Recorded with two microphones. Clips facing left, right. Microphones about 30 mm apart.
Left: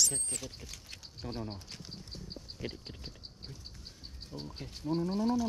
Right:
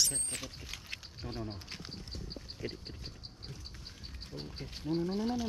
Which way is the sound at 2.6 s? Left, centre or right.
Left.